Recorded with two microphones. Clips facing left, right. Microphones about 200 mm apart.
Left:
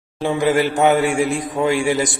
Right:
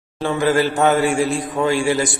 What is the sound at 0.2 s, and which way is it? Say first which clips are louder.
A man's voice: even; 15° left (ahead or behind).